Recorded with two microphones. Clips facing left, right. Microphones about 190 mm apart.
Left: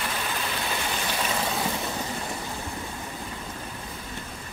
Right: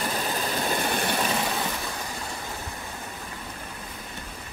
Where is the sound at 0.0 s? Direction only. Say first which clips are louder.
Right 3 dB; 40° right (ahead or behind).